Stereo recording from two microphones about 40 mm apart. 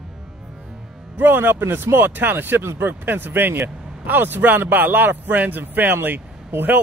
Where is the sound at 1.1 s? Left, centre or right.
Right.